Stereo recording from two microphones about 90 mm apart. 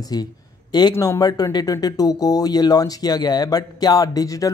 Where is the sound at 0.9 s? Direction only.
30° left (ahead or behind).